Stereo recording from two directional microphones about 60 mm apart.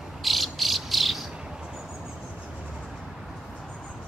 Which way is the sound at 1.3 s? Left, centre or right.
Centre.